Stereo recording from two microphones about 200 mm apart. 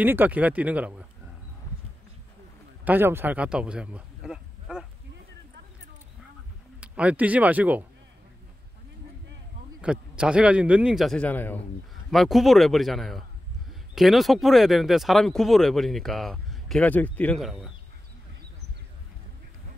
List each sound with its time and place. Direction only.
0.0 s speech: 10° right (ahead or behind)
2.8 s a man's voice: 10° right (ahead or behind)
6.8 s speech: 5° right (ahead or behind)
9.8 s speech: 5° right (ahead or behind)